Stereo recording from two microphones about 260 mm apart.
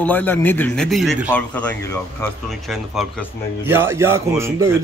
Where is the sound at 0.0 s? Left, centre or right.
Centre.